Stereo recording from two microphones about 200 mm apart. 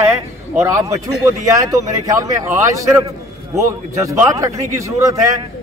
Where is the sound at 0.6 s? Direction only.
15° right (ahead or behind).